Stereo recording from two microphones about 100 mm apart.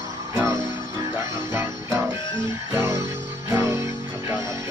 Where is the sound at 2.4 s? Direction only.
30° right (ahead or behind).